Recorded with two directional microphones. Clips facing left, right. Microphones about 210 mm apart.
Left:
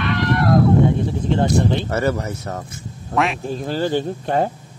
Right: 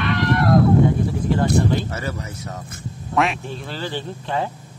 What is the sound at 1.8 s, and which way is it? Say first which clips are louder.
Speech: left 8 dB; 60° left (ahead or behind).